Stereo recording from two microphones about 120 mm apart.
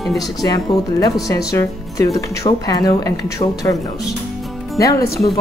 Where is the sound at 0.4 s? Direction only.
30° left (ahead or behind).